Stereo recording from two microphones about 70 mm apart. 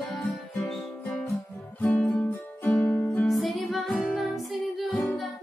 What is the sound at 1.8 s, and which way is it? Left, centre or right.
Music, left.